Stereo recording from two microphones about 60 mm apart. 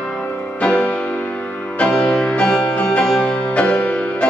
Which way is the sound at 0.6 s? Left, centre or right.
Centre.